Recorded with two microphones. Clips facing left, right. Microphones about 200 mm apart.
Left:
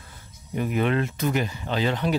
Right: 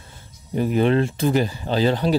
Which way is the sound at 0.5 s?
35° right (ahead or behind).